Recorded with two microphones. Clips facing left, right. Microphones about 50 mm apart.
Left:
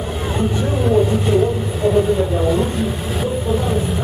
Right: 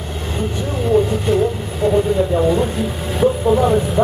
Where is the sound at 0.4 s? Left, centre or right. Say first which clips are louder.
Left 2 dB; centre.